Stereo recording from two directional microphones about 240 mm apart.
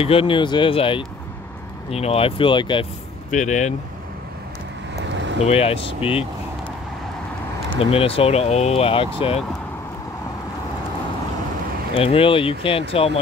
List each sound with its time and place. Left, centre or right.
0.0 s speech: left
5.4 s speech: left
7.7 s speech: left
11.9 s speech: left